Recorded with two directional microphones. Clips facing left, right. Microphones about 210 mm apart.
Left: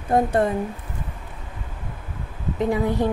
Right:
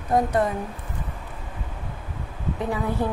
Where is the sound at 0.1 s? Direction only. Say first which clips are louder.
Left 2 dB; 30° left (ahead or behind).